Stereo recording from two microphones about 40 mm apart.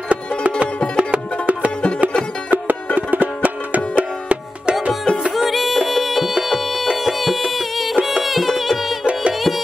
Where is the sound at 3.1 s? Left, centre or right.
Right.